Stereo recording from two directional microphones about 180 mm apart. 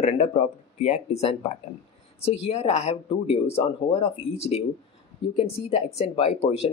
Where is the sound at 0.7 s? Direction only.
35° left (ahead or behind).